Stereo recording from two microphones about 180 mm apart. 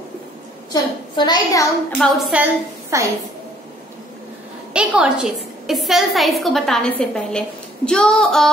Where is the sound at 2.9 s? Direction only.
15° right (ahead or behind).